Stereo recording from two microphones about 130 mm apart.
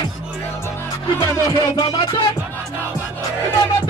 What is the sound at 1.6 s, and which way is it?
Music, 30° left (ahead or behind).